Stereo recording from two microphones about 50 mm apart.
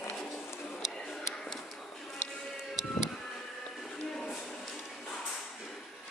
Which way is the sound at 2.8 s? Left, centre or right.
Centre.